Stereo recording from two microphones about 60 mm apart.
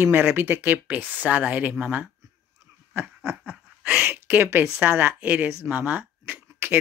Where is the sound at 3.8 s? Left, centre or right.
Right.